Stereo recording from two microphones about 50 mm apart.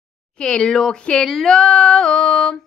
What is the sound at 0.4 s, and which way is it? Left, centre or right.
A woman's voice, centre.